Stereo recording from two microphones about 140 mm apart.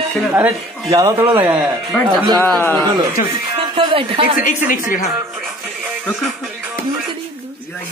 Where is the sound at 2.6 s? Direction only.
20° left (ahead or behind).